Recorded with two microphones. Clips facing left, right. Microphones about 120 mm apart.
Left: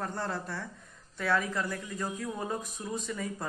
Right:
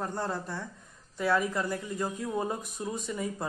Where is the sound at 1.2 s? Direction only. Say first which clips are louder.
Right 2 dB; 15° right (ahead or behind).